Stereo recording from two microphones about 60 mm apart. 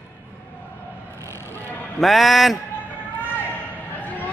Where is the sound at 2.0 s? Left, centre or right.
Centre.